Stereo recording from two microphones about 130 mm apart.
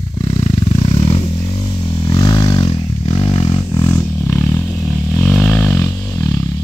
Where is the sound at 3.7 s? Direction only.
20° left (ahead or behind).